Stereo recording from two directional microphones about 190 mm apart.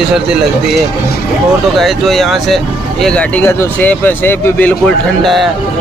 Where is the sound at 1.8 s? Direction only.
Centre (ahead or behind).